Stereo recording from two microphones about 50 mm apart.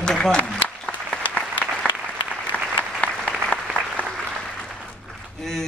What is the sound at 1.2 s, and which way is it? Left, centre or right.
Applause, left.